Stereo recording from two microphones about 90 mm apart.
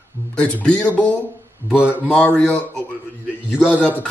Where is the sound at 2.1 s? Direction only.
15° left (ahead or behind).